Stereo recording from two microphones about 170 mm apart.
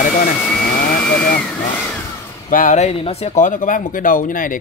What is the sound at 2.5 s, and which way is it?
Speech, 50° left (ahead or behind).